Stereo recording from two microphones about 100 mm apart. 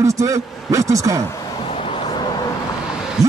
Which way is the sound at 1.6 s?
65° left (ahead or behind).